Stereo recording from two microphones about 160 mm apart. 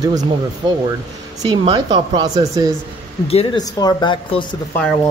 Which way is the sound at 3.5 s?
25° left (ahead or behind).